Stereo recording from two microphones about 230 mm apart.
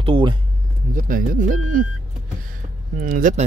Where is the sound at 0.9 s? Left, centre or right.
Right.